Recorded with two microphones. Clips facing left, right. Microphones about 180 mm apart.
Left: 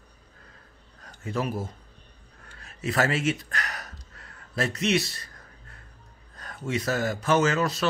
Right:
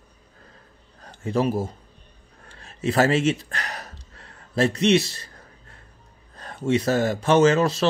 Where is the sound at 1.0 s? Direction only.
30° right (ahead or behind).